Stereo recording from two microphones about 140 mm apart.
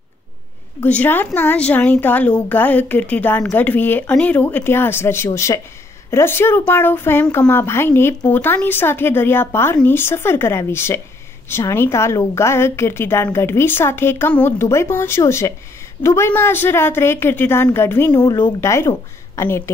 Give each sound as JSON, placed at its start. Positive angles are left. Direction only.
{"t": 0.7, "sound": "a woman's voice", "side_deg": 10}
{"t": 18.1, "sound": "speech", "side_deg": 30}